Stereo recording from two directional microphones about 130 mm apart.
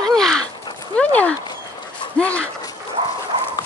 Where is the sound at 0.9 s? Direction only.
10° left (ahead or behind).